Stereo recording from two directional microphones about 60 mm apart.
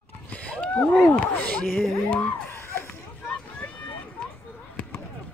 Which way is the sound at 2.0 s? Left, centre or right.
Left.